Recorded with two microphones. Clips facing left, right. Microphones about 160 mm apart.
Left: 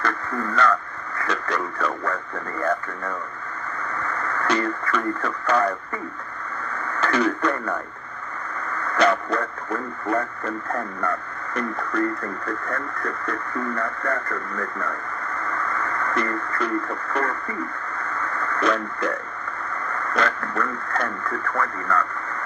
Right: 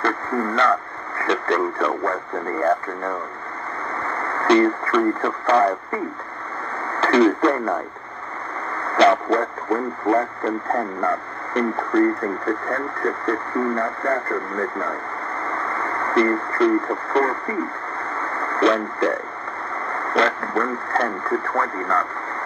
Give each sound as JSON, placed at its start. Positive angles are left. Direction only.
{"t": 0.0, "sound": "speech", "side_deg": -30}
{"t": 6.9, "sound": "speech", "side_deg": -30}
{"t": 18.0, "sound": "radio", "side_deg": -30}
{"t": 19.9, "sound": "speech", "side_deg": -30}